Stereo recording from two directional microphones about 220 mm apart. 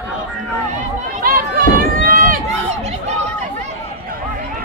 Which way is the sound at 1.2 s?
40° right (ahead or behind).